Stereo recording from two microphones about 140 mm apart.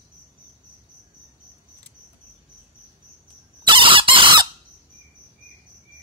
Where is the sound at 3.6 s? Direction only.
35° right (ahead or behind).